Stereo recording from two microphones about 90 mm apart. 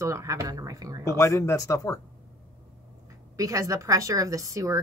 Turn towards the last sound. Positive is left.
turn(degrees=-40)  # may be behind; listen again after turning